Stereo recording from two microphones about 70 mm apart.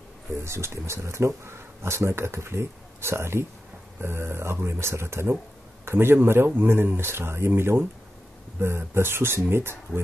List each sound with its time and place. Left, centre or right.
0.4 s speech: right